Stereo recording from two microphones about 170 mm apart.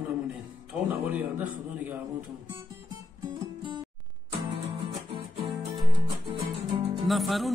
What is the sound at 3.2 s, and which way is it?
Music, 25° right (ahead or behind).